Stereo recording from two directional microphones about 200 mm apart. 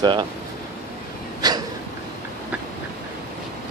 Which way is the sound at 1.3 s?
20° right (ahead or behind).